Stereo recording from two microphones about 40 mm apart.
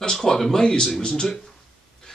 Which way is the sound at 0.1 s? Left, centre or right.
Centre.